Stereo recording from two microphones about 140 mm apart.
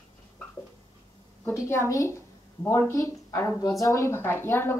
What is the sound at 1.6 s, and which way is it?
A woman's voice, 20° left (ahead or behind).